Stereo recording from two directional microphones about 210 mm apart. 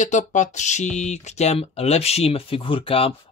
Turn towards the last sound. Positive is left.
turn(degrees=25)  # may be behind; listen again after turning